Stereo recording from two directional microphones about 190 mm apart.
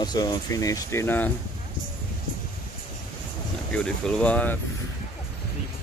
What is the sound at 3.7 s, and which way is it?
Speech, 5° left (ahead or behind).